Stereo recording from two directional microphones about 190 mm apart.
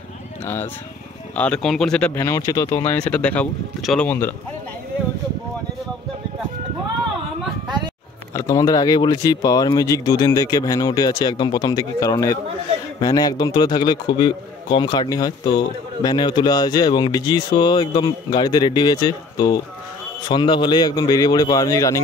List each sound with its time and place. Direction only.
1.3 s speech: 5° left (ahead or behind)
2.9 s speech: 5° left (ahead or behind)
7.6 s a sound: 20° right (ahead or behind)
8.3 s a man's voice: 20° left (ahead or behind)